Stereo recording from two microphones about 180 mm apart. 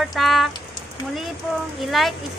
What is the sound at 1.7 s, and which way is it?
Speech, centre (ahead or behind).